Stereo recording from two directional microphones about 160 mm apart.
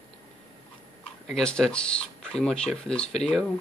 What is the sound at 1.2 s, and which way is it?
Speech, 5° left (ahead or behind).